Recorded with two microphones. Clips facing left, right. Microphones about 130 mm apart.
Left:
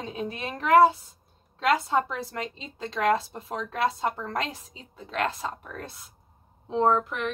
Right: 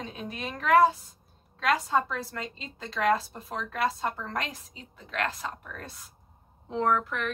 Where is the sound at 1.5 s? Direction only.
20° left (ahead or behind).